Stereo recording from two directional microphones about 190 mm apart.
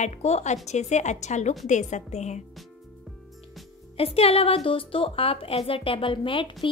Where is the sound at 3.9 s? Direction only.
30° left (ahead or behind).